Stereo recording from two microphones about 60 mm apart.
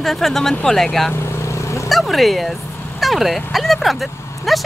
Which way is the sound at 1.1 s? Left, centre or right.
Left.